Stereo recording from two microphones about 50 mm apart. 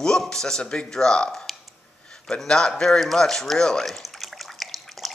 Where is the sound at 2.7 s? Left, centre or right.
Centre.